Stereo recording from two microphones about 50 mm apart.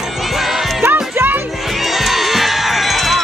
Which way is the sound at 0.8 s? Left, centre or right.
Right.